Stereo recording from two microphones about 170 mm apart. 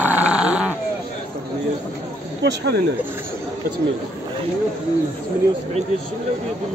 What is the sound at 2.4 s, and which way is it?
Speech, 75° right (ahead or behind).